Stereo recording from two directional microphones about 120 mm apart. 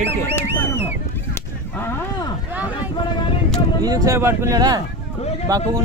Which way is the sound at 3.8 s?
30° right (ahead or behind).